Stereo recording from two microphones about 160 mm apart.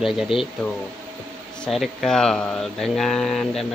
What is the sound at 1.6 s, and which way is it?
Speech, centre (ahead or behind).